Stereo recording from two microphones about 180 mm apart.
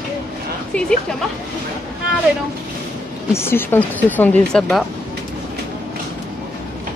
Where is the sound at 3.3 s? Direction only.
10° left (ahead or behind).